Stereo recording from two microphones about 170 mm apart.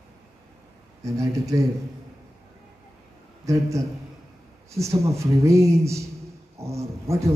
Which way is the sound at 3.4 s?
20° right (ahead or behind).